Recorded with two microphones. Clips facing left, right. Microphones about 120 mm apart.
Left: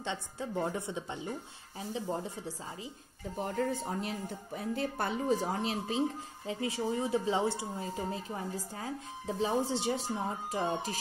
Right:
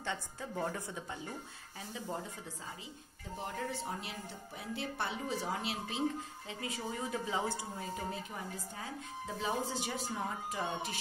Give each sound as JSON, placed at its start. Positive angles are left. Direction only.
{"t": 0.0, "sound": "a woman's voice", "side_deg": 20}
{"t": 3.3, "sound": "a woman's voice", "side_deg": 45}